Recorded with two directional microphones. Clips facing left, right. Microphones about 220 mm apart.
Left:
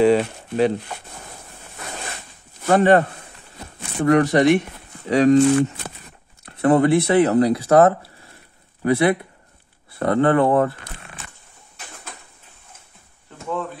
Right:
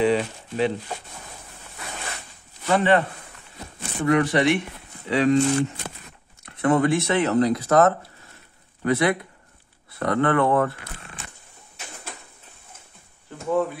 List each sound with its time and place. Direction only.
0.0 s speech: 50° left (ahead or behind)
2.6 s speech: 45° left (ahead or behind)
6.4 s speech: 35° left (ahead or behind)